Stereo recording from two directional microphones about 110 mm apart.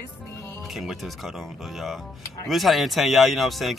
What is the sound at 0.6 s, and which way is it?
Speech, centre (ahead or behind).